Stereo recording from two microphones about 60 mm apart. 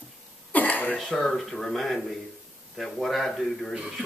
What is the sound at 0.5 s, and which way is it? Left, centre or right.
Cough, left.